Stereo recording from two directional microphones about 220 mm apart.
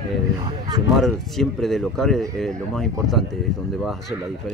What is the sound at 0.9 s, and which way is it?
Speech, centre (ahead or behind).